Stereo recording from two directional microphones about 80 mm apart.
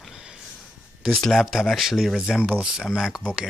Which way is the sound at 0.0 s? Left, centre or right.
Centre.